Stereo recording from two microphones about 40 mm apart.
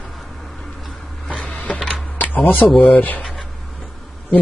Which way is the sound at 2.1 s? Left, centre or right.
Left.